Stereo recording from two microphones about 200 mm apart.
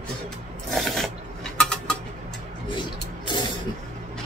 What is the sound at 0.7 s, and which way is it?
Pulleys, centre (ahead or behind).